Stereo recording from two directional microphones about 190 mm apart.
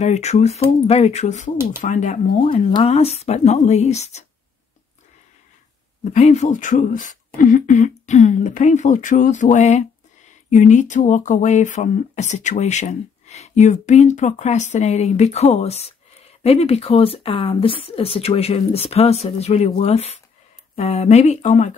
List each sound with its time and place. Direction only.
0.0 s speech: 35° left (ahead or behind)
2.4 s speech: 25° left (ahead or behind)
6.0 s speech: 35° left (ahead or behind)